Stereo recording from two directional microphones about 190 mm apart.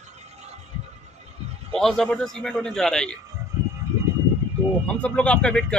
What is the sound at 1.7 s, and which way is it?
A man's voice, 5° left (ahead or behind).